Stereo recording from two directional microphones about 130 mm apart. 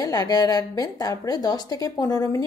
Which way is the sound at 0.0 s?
30° left (ahead or behind).